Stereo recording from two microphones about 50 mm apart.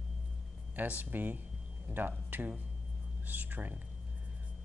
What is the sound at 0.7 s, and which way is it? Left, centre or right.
Speech, right.